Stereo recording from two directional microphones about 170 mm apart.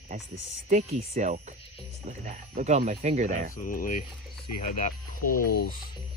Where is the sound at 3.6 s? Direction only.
55° left (ahead or behind).